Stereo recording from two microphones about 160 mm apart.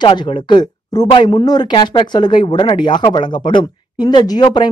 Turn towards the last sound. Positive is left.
turn(degrees=25)  # may be behind; listen again after turning